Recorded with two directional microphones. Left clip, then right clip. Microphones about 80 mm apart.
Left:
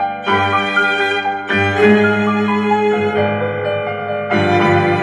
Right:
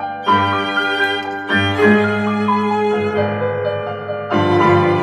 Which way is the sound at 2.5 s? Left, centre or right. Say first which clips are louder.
Even; right.